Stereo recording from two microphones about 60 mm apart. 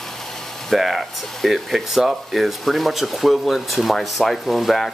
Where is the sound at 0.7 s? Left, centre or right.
Centre.